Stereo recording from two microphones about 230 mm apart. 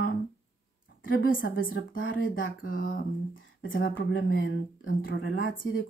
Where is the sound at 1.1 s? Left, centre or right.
Left.